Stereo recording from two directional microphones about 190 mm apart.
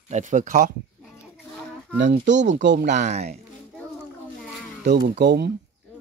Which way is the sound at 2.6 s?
70° right (ahead or behind).